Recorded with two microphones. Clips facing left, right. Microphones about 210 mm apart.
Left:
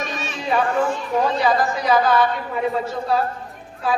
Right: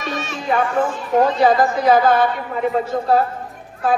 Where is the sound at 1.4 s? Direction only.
50° right (ahead or behind).